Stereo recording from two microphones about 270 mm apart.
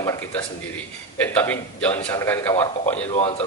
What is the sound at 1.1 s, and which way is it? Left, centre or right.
A man's voice, centre.